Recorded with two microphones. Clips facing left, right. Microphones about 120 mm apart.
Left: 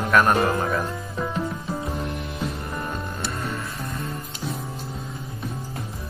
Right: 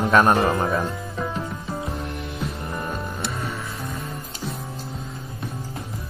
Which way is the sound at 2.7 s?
5° right (ahead or behind).